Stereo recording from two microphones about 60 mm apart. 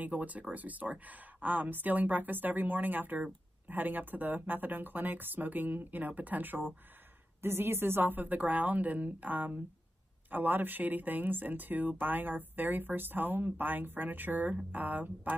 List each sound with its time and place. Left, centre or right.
0.0 s a woman's voice: right